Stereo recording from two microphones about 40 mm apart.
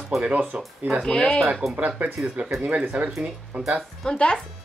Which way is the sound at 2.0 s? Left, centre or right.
Right.